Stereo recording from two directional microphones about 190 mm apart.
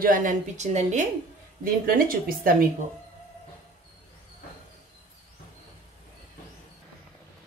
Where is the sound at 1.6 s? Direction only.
50° right (ahead or behind).